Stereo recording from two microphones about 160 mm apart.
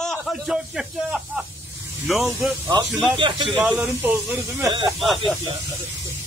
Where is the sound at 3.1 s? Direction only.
30° right (ahead or behind).